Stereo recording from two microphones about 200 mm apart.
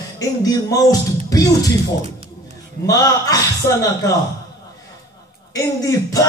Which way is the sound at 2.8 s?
15° left (ahead or behind).